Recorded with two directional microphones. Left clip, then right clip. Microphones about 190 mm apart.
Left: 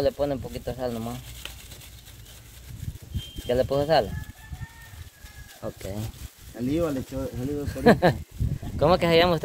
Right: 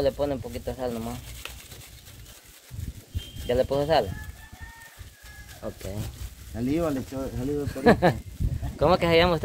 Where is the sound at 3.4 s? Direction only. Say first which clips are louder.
Even; 35° left (ahead or behind).